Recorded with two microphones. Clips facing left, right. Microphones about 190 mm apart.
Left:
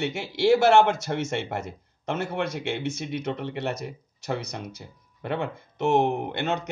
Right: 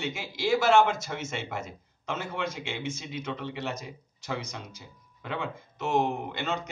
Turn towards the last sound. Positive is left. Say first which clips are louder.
# left 5 dB
turn(degrees=60)  # may be behind; listen again after turning